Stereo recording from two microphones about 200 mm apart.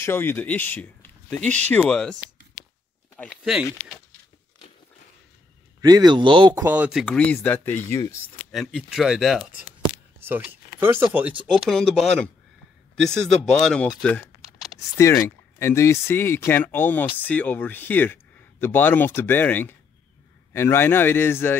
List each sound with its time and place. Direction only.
0.0 s speech: 10° left (ahead or behind)
3.2 s speech: centre (ahead or behind)
5.8 s speech: 20° right (ahead or behind)
6.6 s speech: 10° right (ahead or behind); by 8.2 s 15° left (ahead or behind)
8.5 s speech: centre (ahead or behind)
15.0 s speech: 15° left (ahead or behind)